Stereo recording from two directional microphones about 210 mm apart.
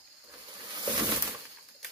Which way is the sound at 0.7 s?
20° right (ahead or behind).